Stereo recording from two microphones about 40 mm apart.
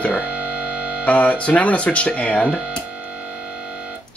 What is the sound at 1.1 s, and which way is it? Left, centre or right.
Speech, left.